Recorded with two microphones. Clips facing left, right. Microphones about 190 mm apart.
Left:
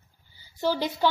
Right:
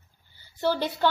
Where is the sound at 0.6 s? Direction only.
10° left (ahead or behind).